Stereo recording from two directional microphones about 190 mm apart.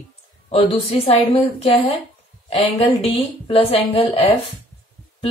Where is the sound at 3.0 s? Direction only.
25° left (ahead or behind).